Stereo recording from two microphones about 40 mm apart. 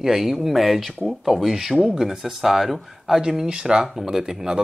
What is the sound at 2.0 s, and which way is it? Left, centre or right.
Speech, centre.